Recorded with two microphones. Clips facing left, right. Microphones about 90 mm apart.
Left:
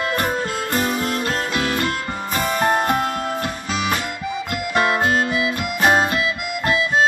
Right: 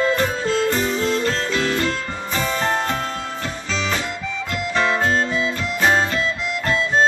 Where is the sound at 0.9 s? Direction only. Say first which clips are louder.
Right 2 dB; 10° left (ahead or behind).